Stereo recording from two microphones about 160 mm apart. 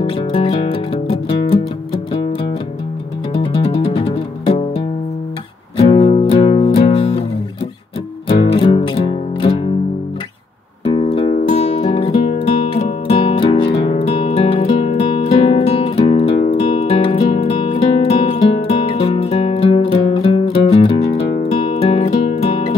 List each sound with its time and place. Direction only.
0.3 s music: 35° left (ahead or behind)
3.3 s music: 30° left (ahead or behind)
5.8 s music: 40° left (ahead or behind)
8.5 s music: 35° left (ahead or behind)
10.9 s music: 35° left (ahead or behind)